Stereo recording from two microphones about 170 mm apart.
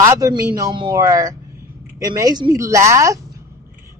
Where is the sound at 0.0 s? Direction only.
20° right (ahead or behind).